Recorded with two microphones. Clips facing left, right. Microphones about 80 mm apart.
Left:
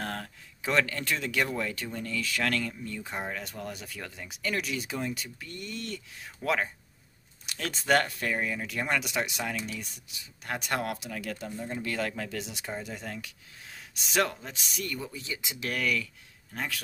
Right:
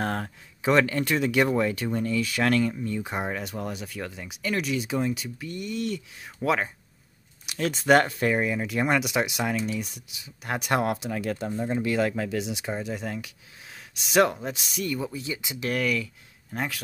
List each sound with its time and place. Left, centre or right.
0.0 s speech: right; by 7.9 s centre
7.9 s speech: right
11.7 s speech: centre
14.2 s speech: centre